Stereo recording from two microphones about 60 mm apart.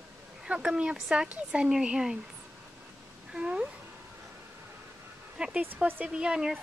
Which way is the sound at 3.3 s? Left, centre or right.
Centre.